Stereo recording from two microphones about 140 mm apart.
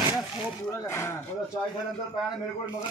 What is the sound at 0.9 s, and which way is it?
Speech, 20° left (ahead or behind).